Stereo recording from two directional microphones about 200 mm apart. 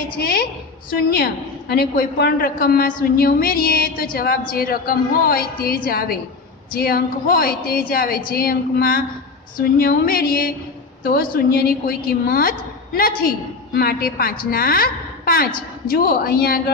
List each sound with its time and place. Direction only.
0.1 s a woman's voice: 50° left (ahead or behind)